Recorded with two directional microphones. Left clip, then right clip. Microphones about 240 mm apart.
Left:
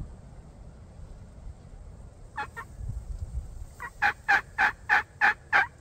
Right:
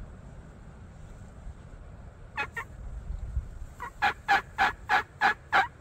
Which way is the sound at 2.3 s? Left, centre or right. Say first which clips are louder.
Right 2 dB; right.